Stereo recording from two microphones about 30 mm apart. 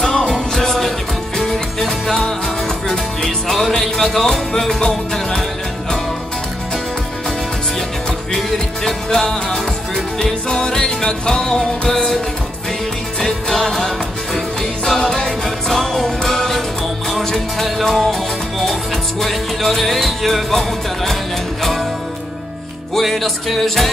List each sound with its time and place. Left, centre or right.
0.3 s music: centre
8.8 s music: left
13.2 s music: centre
17.8 s music: centre
23.5 s music: centre